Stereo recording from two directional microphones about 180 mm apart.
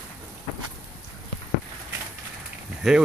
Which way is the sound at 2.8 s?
Centre (ahead or behind).